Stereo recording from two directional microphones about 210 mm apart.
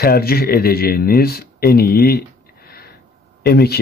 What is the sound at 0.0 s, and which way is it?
Speech, 45° left (ahead or behind).